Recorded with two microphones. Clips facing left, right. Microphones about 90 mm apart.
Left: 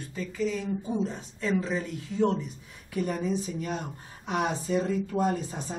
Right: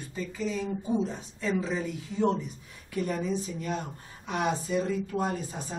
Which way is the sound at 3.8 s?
80° left.